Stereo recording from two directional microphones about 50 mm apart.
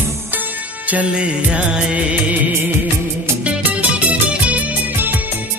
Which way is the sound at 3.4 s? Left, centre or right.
Right.